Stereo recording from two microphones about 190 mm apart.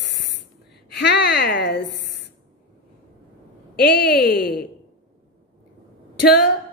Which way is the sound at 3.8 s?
60° left (ahead or behind).